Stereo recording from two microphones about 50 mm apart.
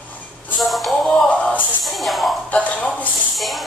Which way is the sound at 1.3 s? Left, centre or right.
Left.